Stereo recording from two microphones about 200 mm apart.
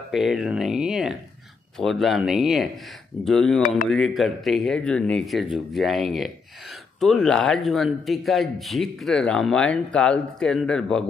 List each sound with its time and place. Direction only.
0.1 s speech: centre (ahead or behind)
3.6 s speech: 40° left (ahead or behind)
3.9 s speech: centre (ahead or behind)